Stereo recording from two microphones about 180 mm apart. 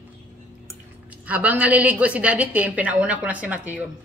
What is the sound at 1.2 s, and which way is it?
A woman's voice, 10° right (ahead or behind).